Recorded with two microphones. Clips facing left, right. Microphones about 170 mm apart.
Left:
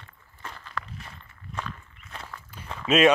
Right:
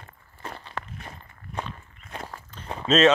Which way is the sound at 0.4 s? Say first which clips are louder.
Right 2 dB; 35° right (ahead or behind).